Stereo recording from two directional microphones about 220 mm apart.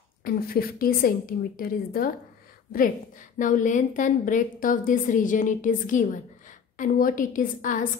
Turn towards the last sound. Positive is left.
turn(degrees=35)  # may be behind; listen again after turning